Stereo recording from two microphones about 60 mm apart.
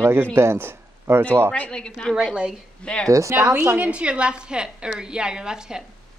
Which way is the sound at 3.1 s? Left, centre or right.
Right.